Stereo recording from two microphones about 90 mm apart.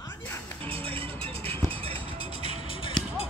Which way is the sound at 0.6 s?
85° right.